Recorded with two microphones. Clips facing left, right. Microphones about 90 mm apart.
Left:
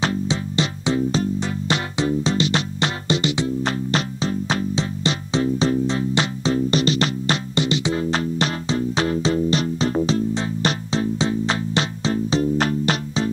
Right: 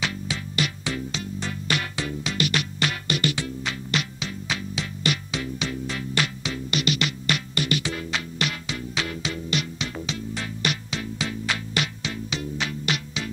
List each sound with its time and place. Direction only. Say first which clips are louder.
0.0 s music: left 8 dB; 30° left (ahead or behind)
3.6 s music: left 6 dB; 35° left (ahead or behind)